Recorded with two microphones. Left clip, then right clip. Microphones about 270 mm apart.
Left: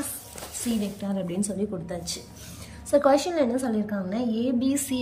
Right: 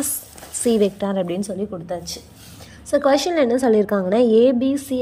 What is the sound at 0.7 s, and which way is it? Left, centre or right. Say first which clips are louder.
A woman's voice: right 14 dB; centre.